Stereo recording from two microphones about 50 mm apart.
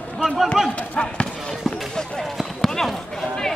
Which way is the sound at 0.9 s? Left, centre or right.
Left.